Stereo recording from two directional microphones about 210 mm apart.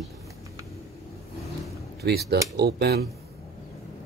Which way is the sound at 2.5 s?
50° right (ahead or behind).